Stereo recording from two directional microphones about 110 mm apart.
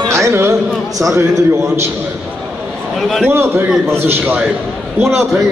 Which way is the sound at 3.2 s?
20° right (ahead or behind).